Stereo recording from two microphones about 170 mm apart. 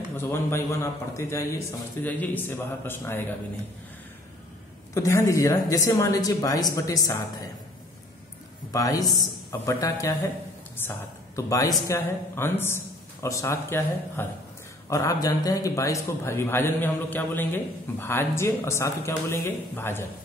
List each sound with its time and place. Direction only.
0.1 s a man's voice: 15° left (ahead or behind)
4.9 s speech: 20° left (ahead or behind)
8.7 s a man's voice: 20° left (ahead or behind)